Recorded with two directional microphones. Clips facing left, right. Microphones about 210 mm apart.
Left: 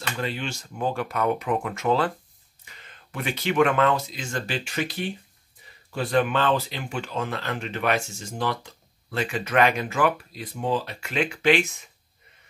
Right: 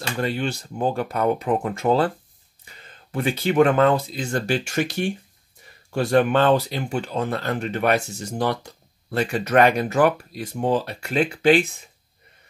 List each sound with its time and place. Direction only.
0.0 s speech: 40° right (ahead or behind)
5.9 s speech: 45° right (ahead or behind)